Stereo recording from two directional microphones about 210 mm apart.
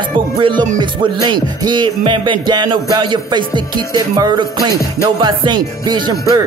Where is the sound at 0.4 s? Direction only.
20° right (ahead or behind).